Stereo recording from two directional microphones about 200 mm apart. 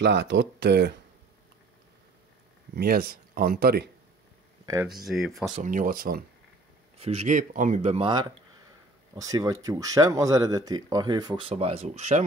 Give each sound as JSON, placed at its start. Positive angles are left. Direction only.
{"t": 0.0, "sound": "speech", "side_deg": -55}
{"t": 2.7, "sound": "speech", "side_deg": -50}
{"t": 4.8, "sound": "speech", "side_deg": 0}
{"t": 5.5, "sound": "speech", "side_deg": -40}
{"t": 7.0, "sound": "speech", "side_deg": -30}